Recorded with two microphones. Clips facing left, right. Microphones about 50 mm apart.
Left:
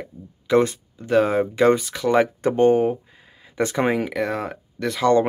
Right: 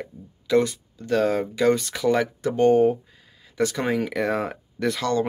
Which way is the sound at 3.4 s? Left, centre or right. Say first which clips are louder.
Left 3 dB; left.